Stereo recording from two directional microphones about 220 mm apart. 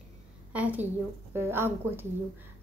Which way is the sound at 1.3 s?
10° right (ahead or behind).